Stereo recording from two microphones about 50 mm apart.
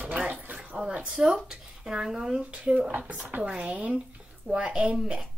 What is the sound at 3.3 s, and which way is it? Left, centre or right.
Speech, right.